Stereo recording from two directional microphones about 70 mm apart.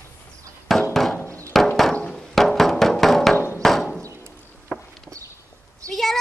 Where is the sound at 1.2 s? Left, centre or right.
Left.